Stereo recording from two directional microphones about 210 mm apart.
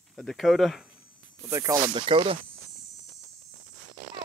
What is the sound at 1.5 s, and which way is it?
Speech, 15° right (ahead or behind).